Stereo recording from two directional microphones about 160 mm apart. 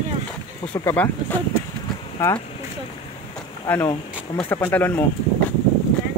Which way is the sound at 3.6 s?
20° left (ahead or behind).